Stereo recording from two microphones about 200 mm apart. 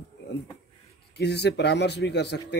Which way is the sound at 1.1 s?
55° left (ahead or behind).